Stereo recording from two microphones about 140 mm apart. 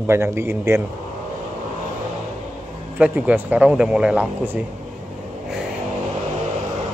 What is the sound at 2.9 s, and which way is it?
A man's voice, 10° right (ahead or behind).